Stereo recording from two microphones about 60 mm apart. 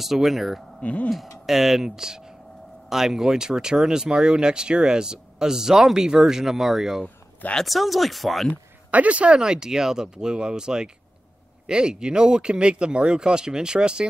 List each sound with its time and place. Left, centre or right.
0.0 s speech: centre
0.8 s speech: left
1.4 s speech: centre
8.9 s speech: right